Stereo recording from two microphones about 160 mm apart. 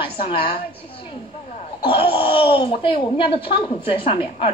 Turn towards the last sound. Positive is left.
turn(degrees=35)  # may be behind; listen again after turning